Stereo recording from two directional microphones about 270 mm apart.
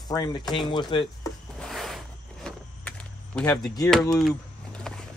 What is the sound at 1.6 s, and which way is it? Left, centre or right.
Vehicle, centre.